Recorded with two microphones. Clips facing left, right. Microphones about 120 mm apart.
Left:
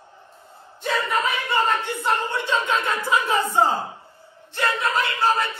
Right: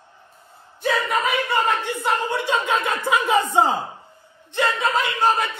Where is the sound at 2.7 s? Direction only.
55° right (ahead or behind).